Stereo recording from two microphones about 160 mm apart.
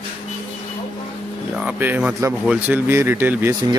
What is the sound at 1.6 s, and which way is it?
Speech, 10° right (ahead or behind).